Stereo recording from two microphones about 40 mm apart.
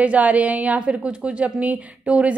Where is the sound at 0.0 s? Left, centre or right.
Right.